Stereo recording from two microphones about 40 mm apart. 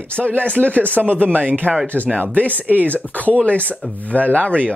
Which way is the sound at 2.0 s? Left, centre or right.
Left.